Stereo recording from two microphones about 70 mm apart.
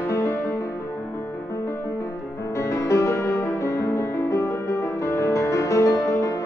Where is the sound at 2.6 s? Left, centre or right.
Left.